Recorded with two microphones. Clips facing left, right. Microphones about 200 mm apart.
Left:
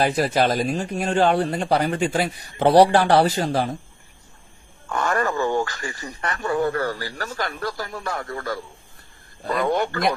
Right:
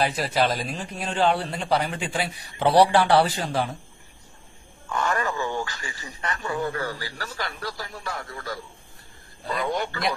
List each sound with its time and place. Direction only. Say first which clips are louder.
0.0 s speech: left 4 dB; 45° left (ahead or behind)
4.8 s speech: left 3 dB; 50° left (ahead or behind)